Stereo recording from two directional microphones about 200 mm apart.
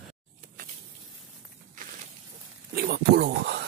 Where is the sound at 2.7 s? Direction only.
50° right (ahead or behind).